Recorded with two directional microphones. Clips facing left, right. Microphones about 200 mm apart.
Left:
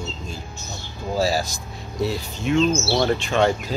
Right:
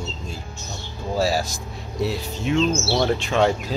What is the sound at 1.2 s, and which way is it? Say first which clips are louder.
Speech: even; centre (ahead or behind).